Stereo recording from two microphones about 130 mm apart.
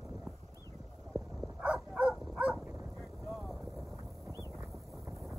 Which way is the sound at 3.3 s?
Centre (ahead or behind).